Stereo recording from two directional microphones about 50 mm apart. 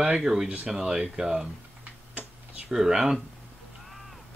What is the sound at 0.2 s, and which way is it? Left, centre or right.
Speech, centre.